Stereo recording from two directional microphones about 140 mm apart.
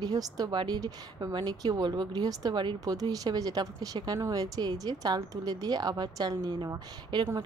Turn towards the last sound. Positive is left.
turn(degrees=-30)  # may be behind; listen again after turning